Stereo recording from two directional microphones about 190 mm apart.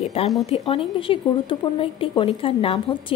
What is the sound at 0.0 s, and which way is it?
A woman's voice, 35° left (ahead or behind).